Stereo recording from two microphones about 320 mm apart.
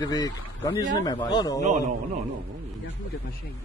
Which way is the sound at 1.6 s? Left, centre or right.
Right.